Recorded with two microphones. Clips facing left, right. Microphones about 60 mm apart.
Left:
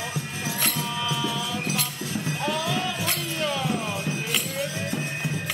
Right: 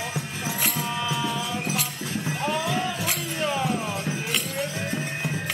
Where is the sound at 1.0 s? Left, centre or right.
Right.